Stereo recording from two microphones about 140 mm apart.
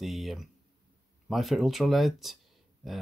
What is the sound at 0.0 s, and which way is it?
Speech, centre (ahead or behind).